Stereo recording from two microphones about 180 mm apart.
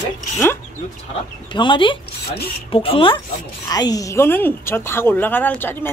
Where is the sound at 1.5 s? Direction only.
25° left (ahead or behind).